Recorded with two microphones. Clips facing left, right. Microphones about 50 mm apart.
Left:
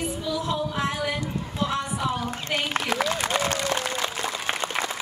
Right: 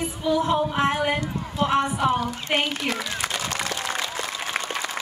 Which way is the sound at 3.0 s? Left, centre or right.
Left.